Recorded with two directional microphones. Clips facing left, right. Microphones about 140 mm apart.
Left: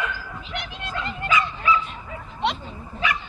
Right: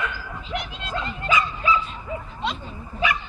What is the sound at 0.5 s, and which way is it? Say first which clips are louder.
Bow-wow: right 2 dB; 20° right (ahead or behind).